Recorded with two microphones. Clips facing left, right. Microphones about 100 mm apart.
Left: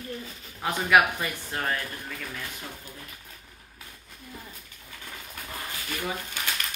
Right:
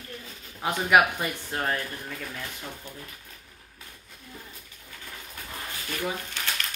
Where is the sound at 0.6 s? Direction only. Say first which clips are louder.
Even; 15° right (ahead or behind).